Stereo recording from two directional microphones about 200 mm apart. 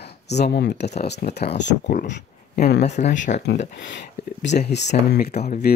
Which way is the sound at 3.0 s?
35° left (ahead or behind).